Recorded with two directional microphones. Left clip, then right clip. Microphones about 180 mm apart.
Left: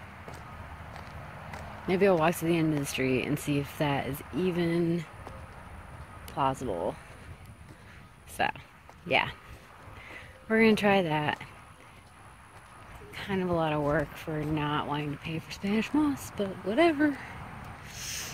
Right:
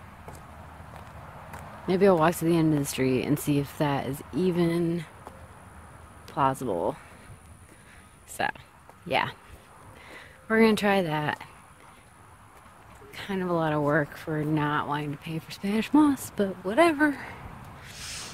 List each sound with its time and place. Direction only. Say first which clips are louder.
1.9 s speech: right 3 dB; 25° right (ahead or behind)
6.3 s speech: right 4 dB; 40° right (ahead or behind)
8.4 s speech: even; 30° right (ahead or behind)
13.1 s speech: right 1 dB; 30° right (ahead or behind)
17.8 s owl: even; 30° right (ahead or behind)